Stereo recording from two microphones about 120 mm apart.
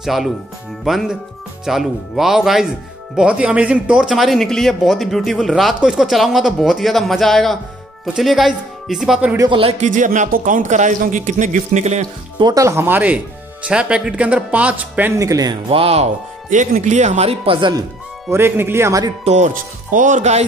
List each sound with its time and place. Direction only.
0.0 s speech: centre (ahead or behind)
9.5 s speech: 50° right (ahead or behind)
9.8 s speech: 90° right; by 12.1 s 75° right (ahead or behind)
12.4 s speech: 35° right (ahead or behind)
12.6 s speech: 20° right (ahead or behind)
15.7 s speech: 55° right (ahead or behind)
17.6 s speech: 40° right (ahead or behind)
18.3 s speech: 20° right (ahead or behind)
19.2 s speech: 80° right